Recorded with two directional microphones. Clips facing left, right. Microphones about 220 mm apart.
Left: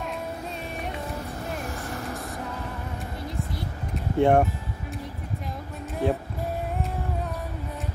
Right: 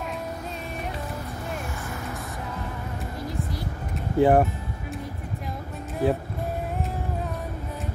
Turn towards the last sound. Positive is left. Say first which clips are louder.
# right 2 dB
turn(degrees=0)  # may be behind; listen again after turning